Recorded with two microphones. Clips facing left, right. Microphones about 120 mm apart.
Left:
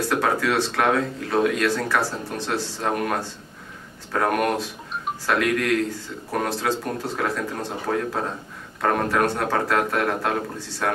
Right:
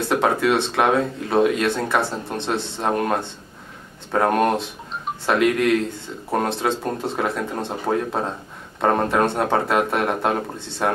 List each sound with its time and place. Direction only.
0.1 s speech: 25° right (ahead or behind)